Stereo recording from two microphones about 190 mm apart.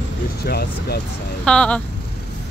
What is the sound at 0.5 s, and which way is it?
Speech, 55° left (ahead or behind).